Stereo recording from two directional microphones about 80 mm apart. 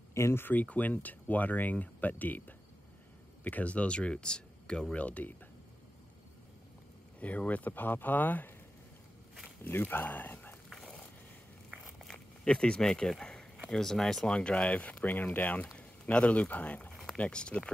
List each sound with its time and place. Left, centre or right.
0.1 s speech: left; by 5.3 s centre
7.2 s speech: centre
9.6 s speech: left
11.7 s a sound: centre
12.4 s speech: centre
16.9 s a sound: centre
17.2 s speech: centre